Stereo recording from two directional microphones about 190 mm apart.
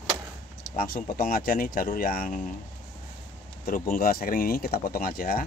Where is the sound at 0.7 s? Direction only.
45° left (ahead or behind).